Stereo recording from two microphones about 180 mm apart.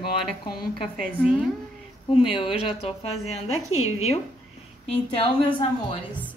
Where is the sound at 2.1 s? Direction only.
30° left (ahead or behind).